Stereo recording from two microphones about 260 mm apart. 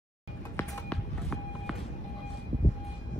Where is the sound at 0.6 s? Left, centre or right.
Centre.